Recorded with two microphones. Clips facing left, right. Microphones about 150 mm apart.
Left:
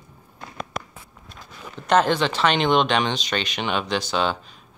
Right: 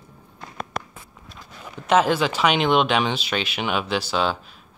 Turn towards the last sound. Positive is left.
turn(degrees=-5)  # may be behind; listen again after turning